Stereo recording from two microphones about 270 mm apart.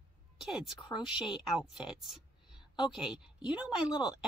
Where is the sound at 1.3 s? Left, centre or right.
Centre.